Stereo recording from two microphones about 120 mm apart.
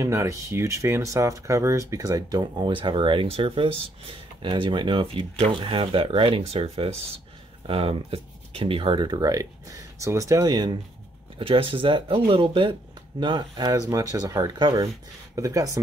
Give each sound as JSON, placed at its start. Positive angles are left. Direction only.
{"t": 0.0, "sound": "speech", "side_deg": -25}
{"t": 11.3, "sound": "speech", "side_deg": -45}